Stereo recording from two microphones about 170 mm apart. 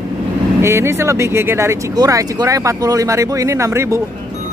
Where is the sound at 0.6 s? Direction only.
15° right (ahead or behind).